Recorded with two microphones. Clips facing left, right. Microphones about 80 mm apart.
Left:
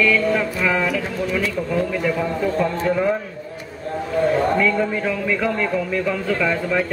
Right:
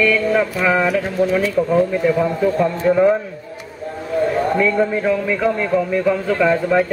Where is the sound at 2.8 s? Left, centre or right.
Centre.